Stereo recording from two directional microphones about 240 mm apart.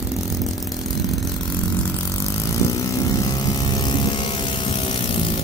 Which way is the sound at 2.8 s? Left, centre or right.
Centre.